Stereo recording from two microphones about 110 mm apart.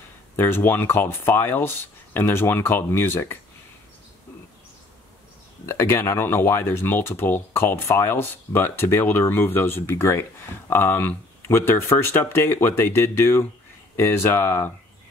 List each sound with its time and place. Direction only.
0.4 s speech: 20° left (ahead or behind)
5.7 s speech: 25° left (ahead or behind)